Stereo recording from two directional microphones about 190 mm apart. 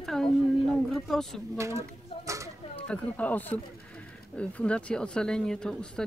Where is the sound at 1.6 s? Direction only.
15° right (ahead or behind).